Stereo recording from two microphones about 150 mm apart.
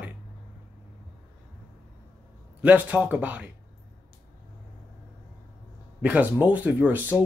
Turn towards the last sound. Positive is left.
turn(degrees=-10)  # may be behind; listen again after turning